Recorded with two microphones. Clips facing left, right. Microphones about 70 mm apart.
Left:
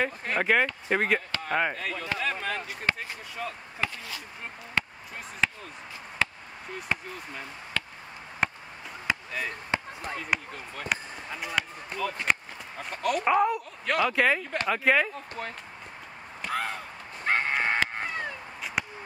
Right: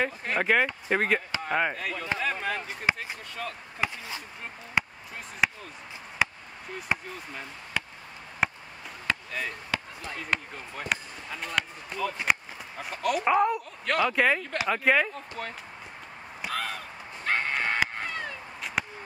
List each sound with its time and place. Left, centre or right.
0.0 s speech: centre
3.4 s chop: centre
3.8 s speech: centre
4.8 s basketball bounce: centre
6.2 s chop: centre
6.9 s speech: centre
7.8 s a sound: centre
9.0 s chop: centre
9.7 s basketball bounce: left
10.5 s speech: centre
11.2 s speech: centre
16.5 s honk: left
18.0 s a sound: centre
18.8 s a sound: centre